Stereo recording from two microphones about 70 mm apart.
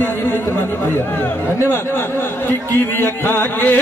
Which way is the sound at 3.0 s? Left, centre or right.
Left.